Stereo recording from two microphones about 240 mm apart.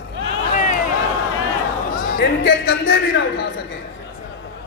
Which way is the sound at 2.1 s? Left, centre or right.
Left.